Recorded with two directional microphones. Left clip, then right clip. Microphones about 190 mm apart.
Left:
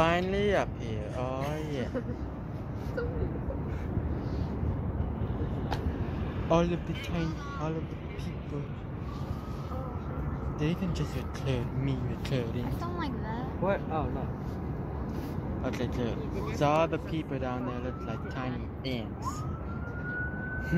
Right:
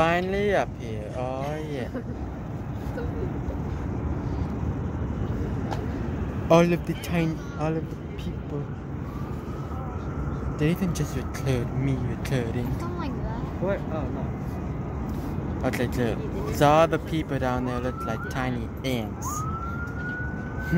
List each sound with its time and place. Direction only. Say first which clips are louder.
0.0 s speech: right 4 dB; 10° right (ahead or behind)
6.5 s speech: right 8 dB; 25° right (ahead or behind)
10.6 s speech: right 7 dB; 15° right (ahead or behind)
15.6 s speech: right 7 dB; 25° right (ahead or behind)